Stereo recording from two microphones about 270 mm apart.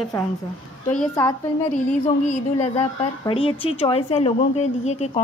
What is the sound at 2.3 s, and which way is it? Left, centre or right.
A woman's voice, left.